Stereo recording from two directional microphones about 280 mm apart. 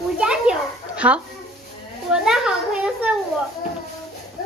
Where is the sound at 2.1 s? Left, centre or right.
Centre.